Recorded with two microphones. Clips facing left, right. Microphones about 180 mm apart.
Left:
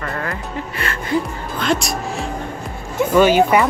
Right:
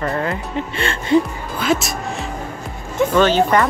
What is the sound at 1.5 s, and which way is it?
Speech, 5° right (ahead or behind).